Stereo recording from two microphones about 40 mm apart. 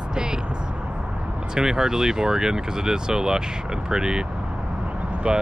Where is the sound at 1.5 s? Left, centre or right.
Centre.